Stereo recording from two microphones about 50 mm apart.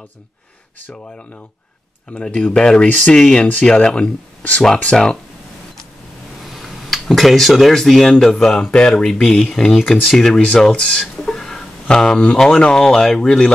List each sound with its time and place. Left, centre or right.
2.2 s speech: centre
2.9 s speech: left
3.2 s speech: centre
6.5 s speech: centre
11.2 s a sound: centre
12.4 s speech: centre